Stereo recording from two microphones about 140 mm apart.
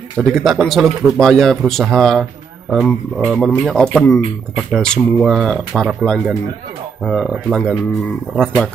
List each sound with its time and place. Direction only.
0.2 s speech: centre (ahead or behind)